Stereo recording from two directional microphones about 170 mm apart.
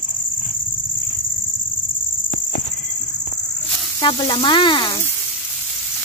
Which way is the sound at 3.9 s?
25° left (ahead or behind).